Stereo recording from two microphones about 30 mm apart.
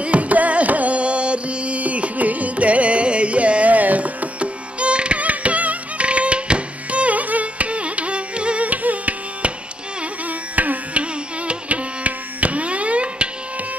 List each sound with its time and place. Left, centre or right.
0.0 s music: right
3.7 s carnatic music: right
4.4 s music: right
5.2 s music: right
6.0 s carnatic music: right
8.6 s carnatic music: right
10.5 s music: right
11.0 s music: right